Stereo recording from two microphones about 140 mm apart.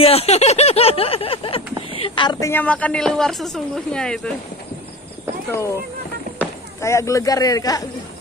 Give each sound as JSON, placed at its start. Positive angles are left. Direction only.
{"t": 0.0, "sound": "a sound", "side_deg": 45}
{"t": 2.4, "sound": "speech", "side_deg": 10}
{"t": 6.3, "sound": "speech", "side_deg": 20}